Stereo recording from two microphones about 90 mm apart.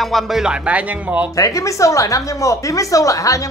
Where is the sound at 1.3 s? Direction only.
40° left (ahead or behind).